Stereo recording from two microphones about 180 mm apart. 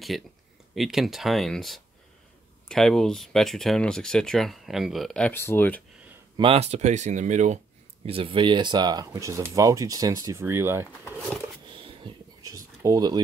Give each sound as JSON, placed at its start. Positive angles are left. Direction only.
{"t": 0.1, "sound": "speech", "side_deg": 0}
{"t": 6.3, "sound": "speech", "side_deg": -30}
{"t": 11.6, "sound": "a sound", "side_deg": -30}